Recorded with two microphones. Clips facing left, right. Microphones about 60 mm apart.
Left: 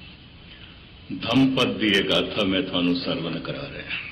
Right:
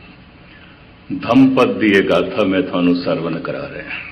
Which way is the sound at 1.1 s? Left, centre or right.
Right.